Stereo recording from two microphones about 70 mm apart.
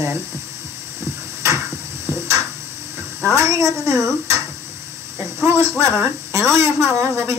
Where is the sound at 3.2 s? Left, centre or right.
Right.